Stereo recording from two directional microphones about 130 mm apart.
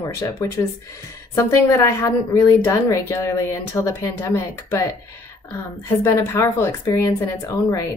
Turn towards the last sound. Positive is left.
turn(degrees=25)  # may be behind; listen again after turning